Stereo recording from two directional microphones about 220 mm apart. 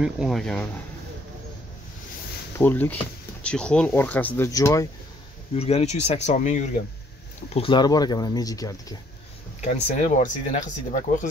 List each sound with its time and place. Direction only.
0.0 s speech: centre (ahead or behind)
2.6 s speech: 10° left (ahead or behind)
5.6 s speech: 30° left (ahead or behind)
9.6 s speech: 35° left (ahead or behind)